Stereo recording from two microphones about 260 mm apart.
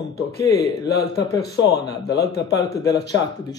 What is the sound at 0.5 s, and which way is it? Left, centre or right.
Speech, left.